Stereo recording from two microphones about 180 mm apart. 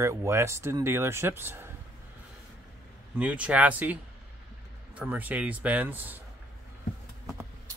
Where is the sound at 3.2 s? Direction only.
5° right (ahead or behind).